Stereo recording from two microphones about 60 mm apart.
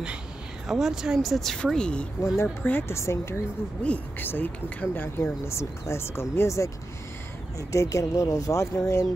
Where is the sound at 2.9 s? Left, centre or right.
Left.